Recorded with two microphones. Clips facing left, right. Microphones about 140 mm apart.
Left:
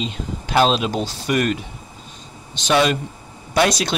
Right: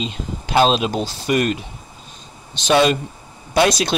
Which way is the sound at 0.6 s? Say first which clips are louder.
Right 1 dB; 20° right (ahead or behind).